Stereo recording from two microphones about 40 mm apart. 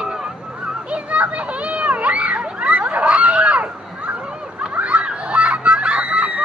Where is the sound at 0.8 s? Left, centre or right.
Right.